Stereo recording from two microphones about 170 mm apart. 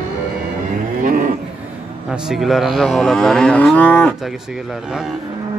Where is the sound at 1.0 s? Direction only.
50° right (ahead or behind).